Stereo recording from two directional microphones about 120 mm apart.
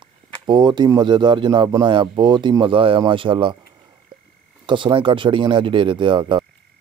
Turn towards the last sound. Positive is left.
turn(degrees=-40)  # may be behind; listen again after turning